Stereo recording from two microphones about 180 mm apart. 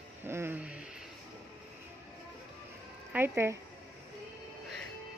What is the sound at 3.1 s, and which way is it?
Speech, 15° right (ahead or behind).